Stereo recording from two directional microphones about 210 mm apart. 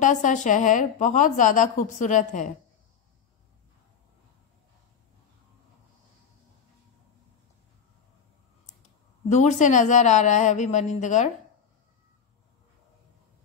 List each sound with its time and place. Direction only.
0.0 s a woman's voice: 35° left (ahead or behind)
9.3 s a woman's voice: 35° left (ahead or behind)